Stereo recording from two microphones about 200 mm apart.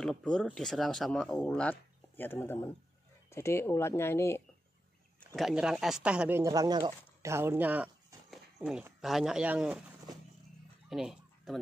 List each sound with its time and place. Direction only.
0.0 s speech: 5° left (ahead or behind)
5.3 s speech: centre (ahead or behind)
10.9 s a sound: centre (ahead or behind)